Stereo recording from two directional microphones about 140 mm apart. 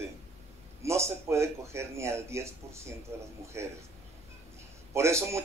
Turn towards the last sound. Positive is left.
turn(degrees=-20)  # may be behind; listen again after turning